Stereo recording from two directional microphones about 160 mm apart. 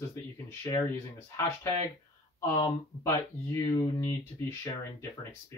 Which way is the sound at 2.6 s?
20° left (ahead or behind).